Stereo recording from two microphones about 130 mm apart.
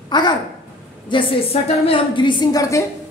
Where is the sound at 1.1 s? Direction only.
45° left (ahead or behind); by 2.8 s 25° left (ahead or behind).